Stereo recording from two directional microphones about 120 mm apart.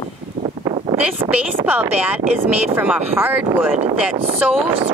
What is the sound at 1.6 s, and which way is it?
Speech, 15° right (ahead or behind).